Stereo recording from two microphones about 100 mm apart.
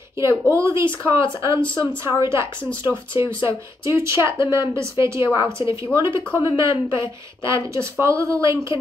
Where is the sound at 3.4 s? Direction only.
30° right (ahead or behind).